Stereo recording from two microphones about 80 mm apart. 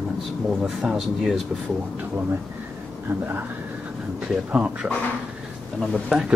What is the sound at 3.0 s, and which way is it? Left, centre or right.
Speech, right.